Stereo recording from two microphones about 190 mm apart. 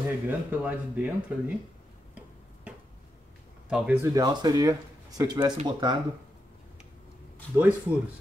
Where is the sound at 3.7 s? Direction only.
10° right (ahead or behind).